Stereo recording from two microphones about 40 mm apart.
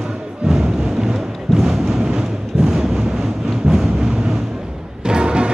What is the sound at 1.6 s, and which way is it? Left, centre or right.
Thunder, centre.